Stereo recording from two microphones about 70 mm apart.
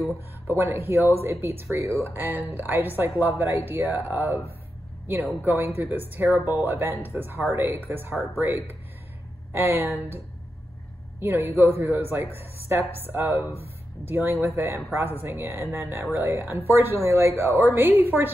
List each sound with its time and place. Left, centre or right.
0.6 s speech: right